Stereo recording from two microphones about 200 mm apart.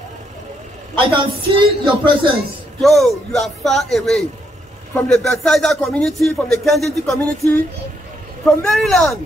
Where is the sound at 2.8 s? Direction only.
Centre (ahead or behind).